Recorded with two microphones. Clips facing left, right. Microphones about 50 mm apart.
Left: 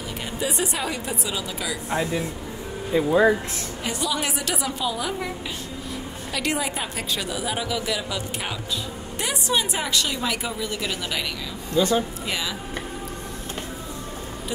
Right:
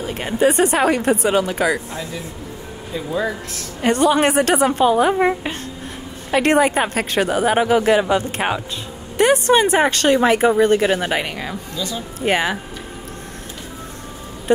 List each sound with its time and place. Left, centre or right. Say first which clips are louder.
0.0 s speech: right 11 dB; right
1.9 s speech: left 4 dB; left
3.8 s speech: right 12 dB; right
11.7 s speech: left 9 dB; left
12.2 s speech: right 10 dB; right